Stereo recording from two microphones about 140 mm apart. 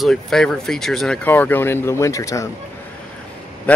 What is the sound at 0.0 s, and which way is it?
A man's voice, 5° left (ahead or behind).